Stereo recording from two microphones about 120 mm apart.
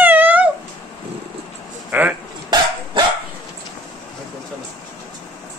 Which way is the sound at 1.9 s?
15° right (ahead or behind).